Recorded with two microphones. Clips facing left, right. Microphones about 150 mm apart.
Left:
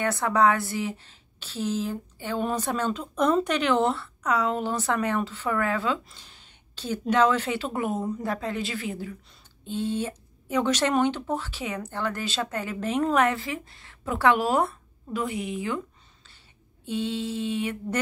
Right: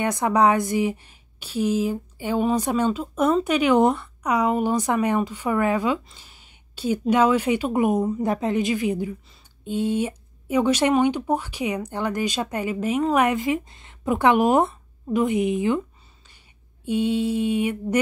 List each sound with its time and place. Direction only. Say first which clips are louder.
0.0 s a woman's voice: right 3 dB; 15° right (ahead or behind)
16.8 s a woman's voice: right 7 dB; 10° right (ahead or behind)